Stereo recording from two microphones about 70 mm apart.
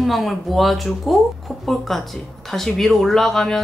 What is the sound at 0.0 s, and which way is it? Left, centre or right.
Speech, centre.